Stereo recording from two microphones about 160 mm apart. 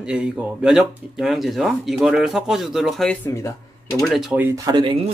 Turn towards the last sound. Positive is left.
turn(degrees=-30)  # may be behind; listen again after turning